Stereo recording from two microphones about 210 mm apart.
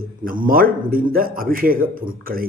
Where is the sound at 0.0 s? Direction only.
40° right (ahead or behind).